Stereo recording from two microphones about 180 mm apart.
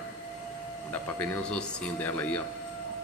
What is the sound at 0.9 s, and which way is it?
A man's voice, 10° left (ahead or behind).